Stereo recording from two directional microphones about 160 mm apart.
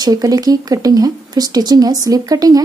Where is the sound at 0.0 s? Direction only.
25° right (ahead or behind).